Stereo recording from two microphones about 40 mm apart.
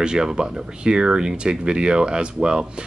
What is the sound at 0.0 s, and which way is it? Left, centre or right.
Speech, centre.